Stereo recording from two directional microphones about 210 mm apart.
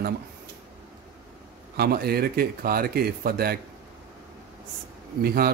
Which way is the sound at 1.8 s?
45° right (ahead or behind).